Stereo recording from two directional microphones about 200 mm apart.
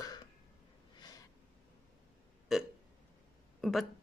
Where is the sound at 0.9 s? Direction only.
20° left (ahead or behind).